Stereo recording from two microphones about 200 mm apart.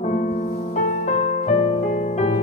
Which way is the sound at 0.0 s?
40° left (ahead or behind).